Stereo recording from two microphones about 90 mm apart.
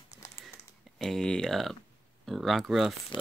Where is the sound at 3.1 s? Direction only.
60° left (ahead or behind).